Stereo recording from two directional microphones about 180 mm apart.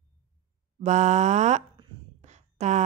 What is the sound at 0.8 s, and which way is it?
Speech, 40° right (ahead or behind).